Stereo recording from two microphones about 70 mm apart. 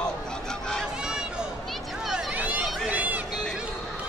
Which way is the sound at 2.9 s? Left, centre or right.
Right.